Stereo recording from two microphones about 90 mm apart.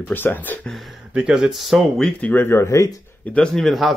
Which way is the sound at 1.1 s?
10° right (ahead or behind).